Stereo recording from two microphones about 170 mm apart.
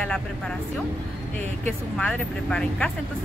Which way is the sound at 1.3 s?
10° left (ahead or behind).